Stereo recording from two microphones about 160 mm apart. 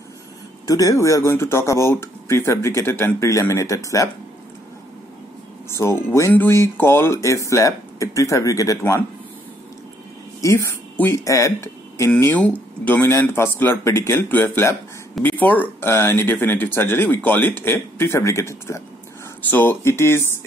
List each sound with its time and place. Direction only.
0.7 s speech: 20° left (ahead or behind)
5.7 s speech: 15° left (ahead or behind)
10.4 s speech: 20° left (ahead or behind)
12.1 s speech: 10° left (ahead or behind)